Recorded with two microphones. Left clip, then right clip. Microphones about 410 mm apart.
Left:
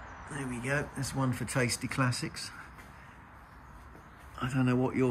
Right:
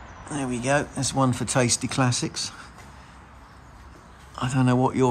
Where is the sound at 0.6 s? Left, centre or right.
Centre.